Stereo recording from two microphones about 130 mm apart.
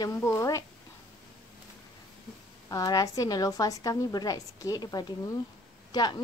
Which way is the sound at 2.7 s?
30° left (ahead or behind).